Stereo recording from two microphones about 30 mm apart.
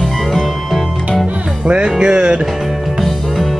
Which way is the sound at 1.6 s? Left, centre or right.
Right.